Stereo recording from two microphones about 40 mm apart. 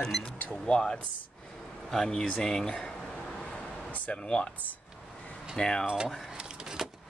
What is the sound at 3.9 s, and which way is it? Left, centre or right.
Speech, left.